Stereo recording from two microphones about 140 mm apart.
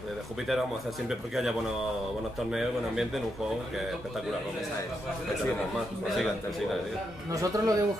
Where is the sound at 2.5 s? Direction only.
5° right (ahead or behind).